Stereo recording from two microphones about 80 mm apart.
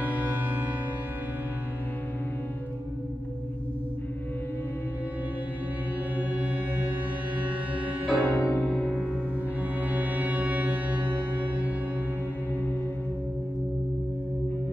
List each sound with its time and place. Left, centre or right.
0.2 s music: right
7.7 s music: right
8.1 s music: left
8.4 s music: left
8.6 s music: centre
9.9 s music: right